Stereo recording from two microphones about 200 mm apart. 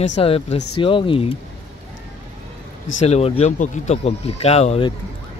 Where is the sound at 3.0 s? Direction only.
30° left (ahead or behind).